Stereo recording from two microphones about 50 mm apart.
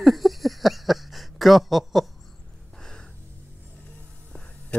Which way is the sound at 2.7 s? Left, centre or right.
Centre.